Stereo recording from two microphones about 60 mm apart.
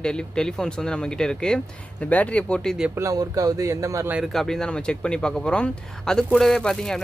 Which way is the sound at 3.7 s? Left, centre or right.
Right.